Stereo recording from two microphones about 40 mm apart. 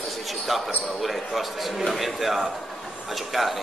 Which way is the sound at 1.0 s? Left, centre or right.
Centre.